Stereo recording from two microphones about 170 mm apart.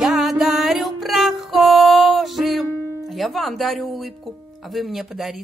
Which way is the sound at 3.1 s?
Centre (ahead or behind).